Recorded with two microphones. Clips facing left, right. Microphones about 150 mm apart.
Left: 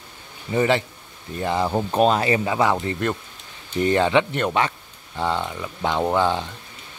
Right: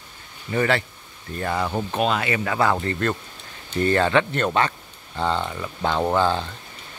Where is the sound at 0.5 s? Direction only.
20° left (ahead or behind); by 2.4 s 35° left (ahead or behind).